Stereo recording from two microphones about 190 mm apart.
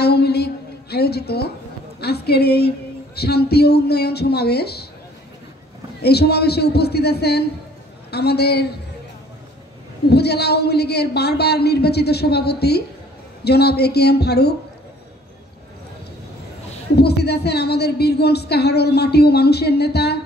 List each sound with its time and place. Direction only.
0.0 s a sound: 60° left (ahead or behind)
2.0 s speech: 55° left (ahead or behind)
6.0 s speech: 60° left (ahead or behind)
10.0 s speech: 60° left (ahead or behind)
16.9 s speech: 60° left (ahead or behind)